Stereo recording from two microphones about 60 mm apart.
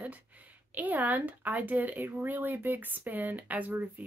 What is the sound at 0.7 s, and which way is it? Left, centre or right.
Speech, right.